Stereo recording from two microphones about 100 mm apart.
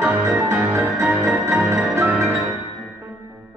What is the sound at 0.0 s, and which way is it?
Music, 15° right (ahead or behind).